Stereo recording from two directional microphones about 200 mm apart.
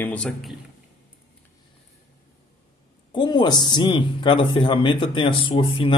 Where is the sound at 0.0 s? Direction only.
5° left (ahead or behind).